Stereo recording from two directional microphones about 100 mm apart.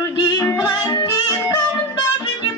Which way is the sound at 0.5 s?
45° left (ahead or behind).